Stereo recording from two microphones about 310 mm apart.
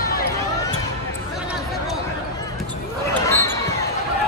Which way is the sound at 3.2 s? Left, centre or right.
Centre.